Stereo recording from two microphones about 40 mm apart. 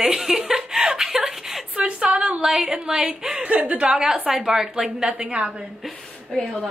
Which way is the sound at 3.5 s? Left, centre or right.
Right.